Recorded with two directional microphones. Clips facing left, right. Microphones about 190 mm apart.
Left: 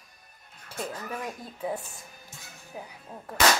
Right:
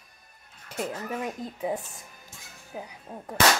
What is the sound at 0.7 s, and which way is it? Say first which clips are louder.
Speech: right 3 dB; 20° right (ahead or behind).